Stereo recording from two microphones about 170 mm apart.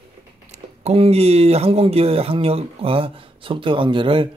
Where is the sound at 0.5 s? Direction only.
35° right (ahead or behind).